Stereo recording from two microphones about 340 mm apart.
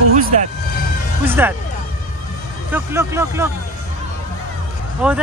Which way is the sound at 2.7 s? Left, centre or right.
Centre.